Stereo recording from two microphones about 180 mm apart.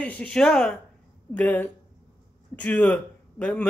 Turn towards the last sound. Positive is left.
turn(degrees=5)  # may be behind; listen again after turning